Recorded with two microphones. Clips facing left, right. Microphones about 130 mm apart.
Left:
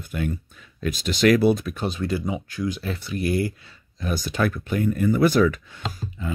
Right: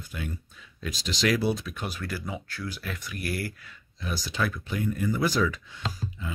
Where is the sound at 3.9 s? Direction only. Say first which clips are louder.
Left 6 dB; 50° left (ahead or behind).